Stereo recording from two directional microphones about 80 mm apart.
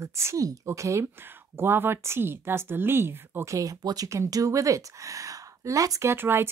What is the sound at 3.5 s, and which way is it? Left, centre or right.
Speech, right.